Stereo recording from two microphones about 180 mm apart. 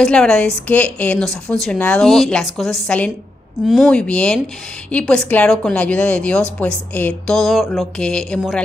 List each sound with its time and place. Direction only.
0.0 s a woman's voice: 5° left (ahead or behind)